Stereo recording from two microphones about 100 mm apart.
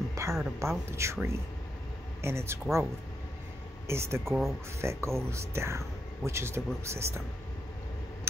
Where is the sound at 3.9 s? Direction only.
25° right (ahead or behind).